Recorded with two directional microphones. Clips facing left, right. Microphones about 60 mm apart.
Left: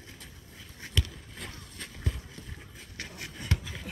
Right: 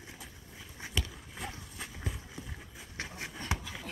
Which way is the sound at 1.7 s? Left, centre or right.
Centre.